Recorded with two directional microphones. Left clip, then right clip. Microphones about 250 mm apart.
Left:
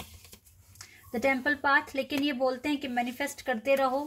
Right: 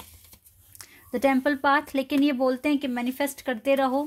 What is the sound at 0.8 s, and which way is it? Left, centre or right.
Speech, right.